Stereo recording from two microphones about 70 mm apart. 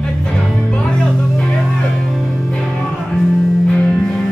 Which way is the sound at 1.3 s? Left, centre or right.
Centre.